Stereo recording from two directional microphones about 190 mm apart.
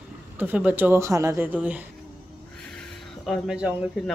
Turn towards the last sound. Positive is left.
turn(degrees=-5)  # may be behind; listen again after turning